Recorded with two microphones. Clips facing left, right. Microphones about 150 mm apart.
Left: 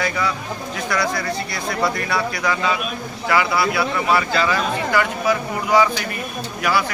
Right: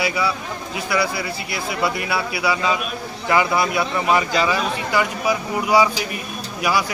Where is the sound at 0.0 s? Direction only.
10° right (ahead or behind).